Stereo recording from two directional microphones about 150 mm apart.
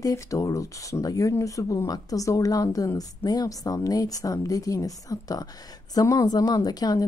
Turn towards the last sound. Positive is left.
turn(degrees=25)  # may be behind; listen again after turning